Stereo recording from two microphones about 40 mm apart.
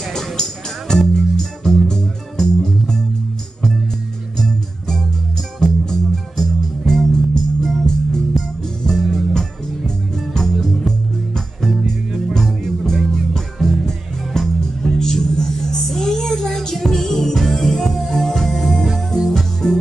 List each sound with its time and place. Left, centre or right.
0.1 s music: centre
4.4 s music: centre
18.9 s music: centre
19.6 s music: centre